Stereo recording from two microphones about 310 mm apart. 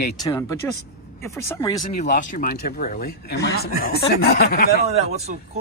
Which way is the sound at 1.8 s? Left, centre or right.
Left.